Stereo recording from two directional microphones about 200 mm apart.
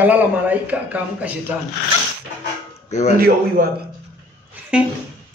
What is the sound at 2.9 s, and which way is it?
Speech, 35° left (ahead or behind).